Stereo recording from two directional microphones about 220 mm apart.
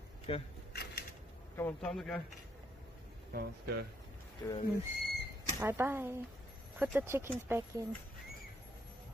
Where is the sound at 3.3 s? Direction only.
45° right (ahead or behind).